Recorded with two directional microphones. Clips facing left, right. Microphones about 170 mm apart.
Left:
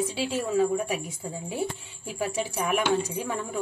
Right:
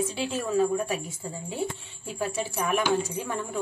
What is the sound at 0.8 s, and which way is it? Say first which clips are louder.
Speech: even; 15° left (ahead or behind).